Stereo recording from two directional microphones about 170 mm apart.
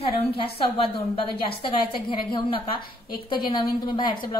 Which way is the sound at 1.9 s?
30° left (ahead or behind).